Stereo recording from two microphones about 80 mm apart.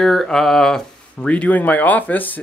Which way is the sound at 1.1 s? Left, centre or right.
Centre.